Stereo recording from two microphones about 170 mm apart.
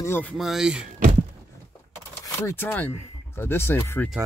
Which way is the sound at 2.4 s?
10° left (ahead or behind).